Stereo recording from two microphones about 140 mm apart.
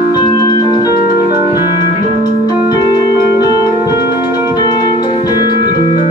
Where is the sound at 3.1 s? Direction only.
15° right (ahead or behind).